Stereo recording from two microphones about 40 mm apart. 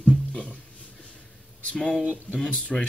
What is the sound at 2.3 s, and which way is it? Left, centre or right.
Speech, left.